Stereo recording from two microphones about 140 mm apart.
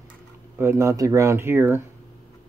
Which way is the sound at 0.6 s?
20° right (ahead or behind).